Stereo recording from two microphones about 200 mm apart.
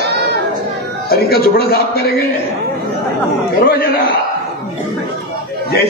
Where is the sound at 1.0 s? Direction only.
50° left (ahead or behind).